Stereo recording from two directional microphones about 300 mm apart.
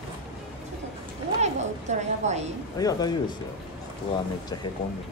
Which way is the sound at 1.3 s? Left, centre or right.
Right.